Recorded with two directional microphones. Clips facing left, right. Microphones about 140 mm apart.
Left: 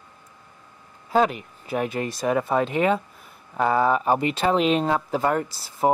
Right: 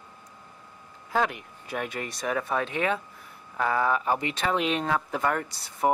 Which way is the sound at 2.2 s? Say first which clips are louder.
Left 6 dB; 25° left (ahead or behind).